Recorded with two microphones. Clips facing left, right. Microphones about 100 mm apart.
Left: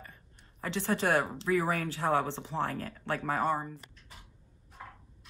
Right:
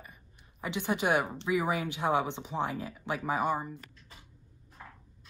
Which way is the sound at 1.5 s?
15° right (ahead or behind).